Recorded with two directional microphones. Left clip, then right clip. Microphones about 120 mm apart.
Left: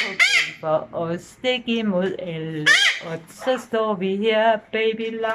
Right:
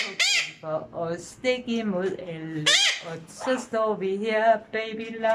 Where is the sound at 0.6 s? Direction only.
15° left (ahead or behind).